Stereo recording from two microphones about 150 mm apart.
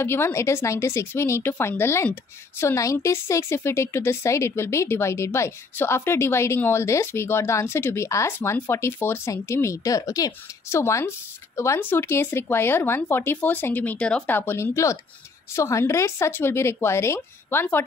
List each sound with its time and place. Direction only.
0.0 s speech: 15° left (ahead or behind)